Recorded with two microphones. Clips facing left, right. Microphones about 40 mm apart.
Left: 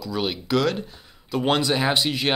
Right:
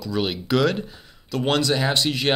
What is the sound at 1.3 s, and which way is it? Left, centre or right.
Speech, centre.